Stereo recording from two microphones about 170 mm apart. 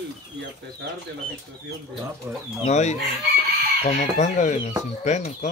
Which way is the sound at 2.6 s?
40° left (ahead or behind).